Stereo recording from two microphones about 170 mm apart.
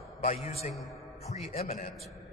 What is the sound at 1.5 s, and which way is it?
Speech, 35° left (ahead or behind).